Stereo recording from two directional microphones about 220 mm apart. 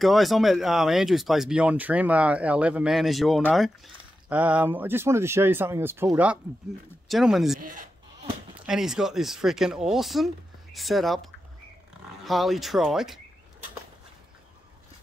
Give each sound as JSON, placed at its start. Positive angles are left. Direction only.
{"t": 0.0, "sound": "speech", "side_deg": 0}
{"t": 8.6, "sound": "speech", "side_deg": 0}
{"t": 12.3, "sound": "speech", "side_deg": 0}